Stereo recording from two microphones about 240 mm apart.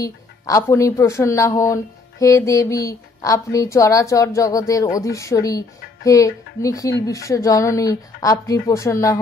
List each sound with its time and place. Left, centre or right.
0.0 s speech: centre